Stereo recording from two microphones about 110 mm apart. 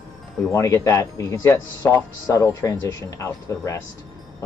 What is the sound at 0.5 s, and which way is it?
Speech, 25° left (ahead or behind).